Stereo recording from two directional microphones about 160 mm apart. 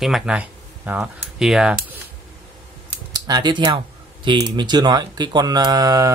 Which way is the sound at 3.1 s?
25° right (ahead or behind).